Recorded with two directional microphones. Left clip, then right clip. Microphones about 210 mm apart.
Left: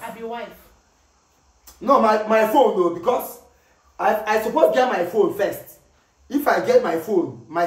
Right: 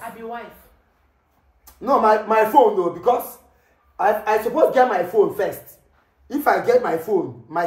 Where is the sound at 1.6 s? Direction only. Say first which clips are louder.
Even; centre (ahead or behind).